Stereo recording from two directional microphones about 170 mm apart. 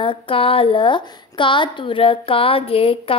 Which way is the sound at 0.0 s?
30° left (ahead or behind).